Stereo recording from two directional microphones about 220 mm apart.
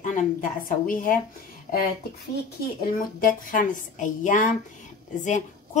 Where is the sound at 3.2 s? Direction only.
40° left (ahead or behind).